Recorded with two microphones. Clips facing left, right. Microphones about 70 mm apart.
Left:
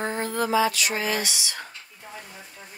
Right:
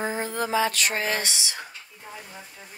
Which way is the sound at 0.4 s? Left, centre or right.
Right.